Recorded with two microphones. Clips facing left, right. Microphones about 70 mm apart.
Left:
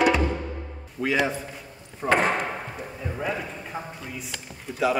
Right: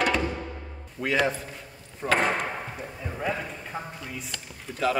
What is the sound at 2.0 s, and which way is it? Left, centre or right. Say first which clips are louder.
Speech: left 3 dB; left.